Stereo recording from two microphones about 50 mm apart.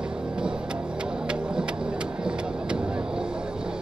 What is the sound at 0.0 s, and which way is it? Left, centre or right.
Vehicle, centre.